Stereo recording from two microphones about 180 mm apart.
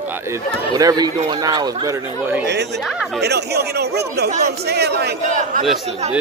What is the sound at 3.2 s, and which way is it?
Speech, 65° right (ahead or behind).